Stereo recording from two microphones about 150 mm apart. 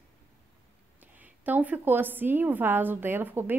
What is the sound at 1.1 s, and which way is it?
Speech, 10° right (ahead or behind).